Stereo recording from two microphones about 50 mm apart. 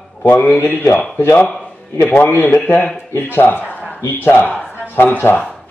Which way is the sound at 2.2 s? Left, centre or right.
Left.